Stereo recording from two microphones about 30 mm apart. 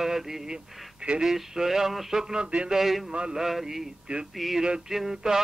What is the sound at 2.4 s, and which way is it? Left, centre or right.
Speech, right.